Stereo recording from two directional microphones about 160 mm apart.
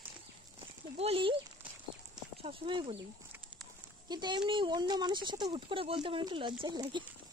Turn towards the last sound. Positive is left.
turn(degrees=-30)  # may be behind; listen again after turning